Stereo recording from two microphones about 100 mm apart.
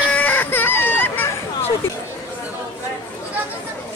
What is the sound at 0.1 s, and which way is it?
Baby cry, 15° left (ahead or behind).